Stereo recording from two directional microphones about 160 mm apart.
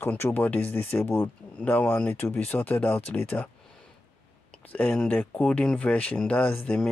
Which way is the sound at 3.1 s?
10° left (ahead or behind).